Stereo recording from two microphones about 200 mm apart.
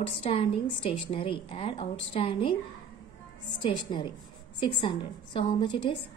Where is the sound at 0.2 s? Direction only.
30° left (ahead or behind).